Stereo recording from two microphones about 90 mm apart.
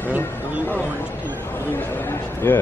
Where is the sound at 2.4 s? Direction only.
25° left (ahead or behind).